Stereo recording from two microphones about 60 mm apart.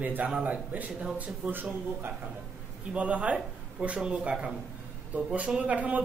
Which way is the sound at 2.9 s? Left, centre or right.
Right.